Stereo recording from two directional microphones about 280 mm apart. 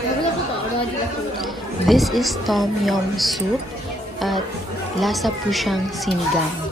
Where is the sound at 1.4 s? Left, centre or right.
Centre.